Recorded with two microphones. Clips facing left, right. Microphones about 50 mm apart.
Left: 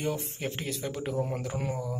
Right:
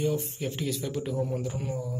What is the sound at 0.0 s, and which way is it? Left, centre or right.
Speech, left.